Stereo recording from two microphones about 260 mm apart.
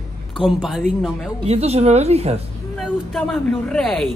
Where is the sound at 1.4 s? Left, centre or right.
Right.